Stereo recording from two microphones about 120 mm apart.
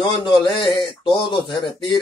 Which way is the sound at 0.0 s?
40° left (ahead or behind).